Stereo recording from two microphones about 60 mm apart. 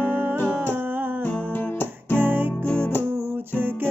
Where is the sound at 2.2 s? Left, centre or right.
Right.